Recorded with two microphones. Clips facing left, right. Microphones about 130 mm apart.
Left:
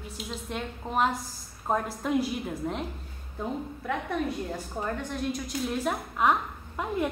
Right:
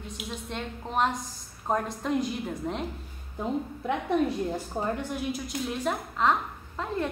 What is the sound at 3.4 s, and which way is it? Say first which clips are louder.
Speech: right 3 dB; 20° right (ahead or behind).